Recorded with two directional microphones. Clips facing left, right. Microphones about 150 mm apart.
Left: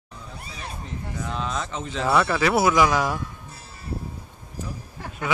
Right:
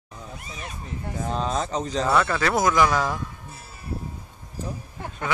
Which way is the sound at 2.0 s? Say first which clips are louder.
Left 3 dB; 10° left (ahead or behind).